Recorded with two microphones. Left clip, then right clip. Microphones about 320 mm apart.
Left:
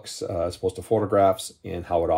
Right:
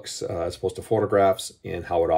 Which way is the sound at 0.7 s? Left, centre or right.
Centre.